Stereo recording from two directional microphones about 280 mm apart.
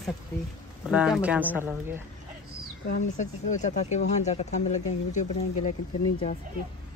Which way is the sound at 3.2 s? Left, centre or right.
Left.